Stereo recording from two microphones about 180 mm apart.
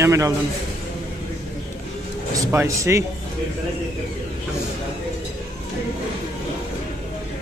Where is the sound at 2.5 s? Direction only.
15° right (ahead or behind).